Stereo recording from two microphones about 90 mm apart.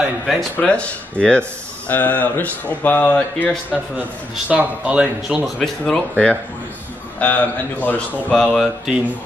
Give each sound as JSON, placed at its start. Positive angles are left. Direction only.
{"t": 0.0, "sound": "speech", "side_deg": 0}
{"t": 0.6, "sound": "a man's voice", "side_deg": 15}
{"t": 4.5, "sound": "speech", "side_deg": -15}
{"t": 5.4, "sound": "a man's voice", "side_deg": 5}
{"t": 8.4, "sound": "speech", "side_deg": 0}